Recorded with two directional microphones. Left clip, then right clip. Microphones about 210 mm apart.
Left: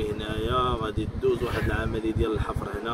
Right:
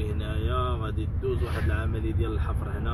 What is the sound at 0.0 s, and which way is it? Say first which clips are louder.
Speech: left 6 dB; 20° left (ahead or behind).